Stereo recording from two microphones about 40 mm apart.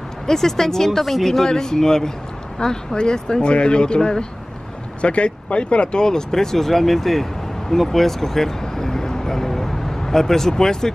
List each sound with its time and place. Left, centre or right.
0.3 s speech: centre
7.7 s vehicle: centre